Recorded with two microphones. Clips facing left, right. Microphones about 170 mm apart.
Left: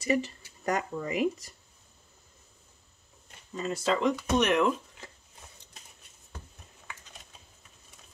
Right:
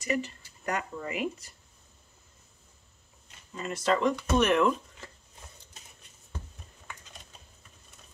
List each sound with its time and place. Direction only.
0.0 s speech: 35° left (ahead or behind)
3.5 s speech: 25° left (ahead or behind)
4.2 s speech: 10° left (ahead or behind)